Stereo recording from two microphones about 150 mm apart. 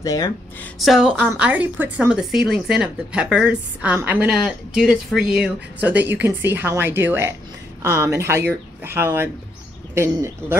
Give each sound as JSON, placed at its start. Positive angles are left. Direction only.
{"t": 0.0, "sound": "speech", "side_deg": 20}
{"t": 0.7, "sound": "speech", "side_deg": 0}